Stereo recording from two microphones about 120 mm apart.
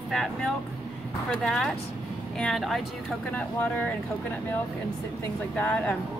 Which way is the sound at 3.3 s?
15° left (ahead or behind).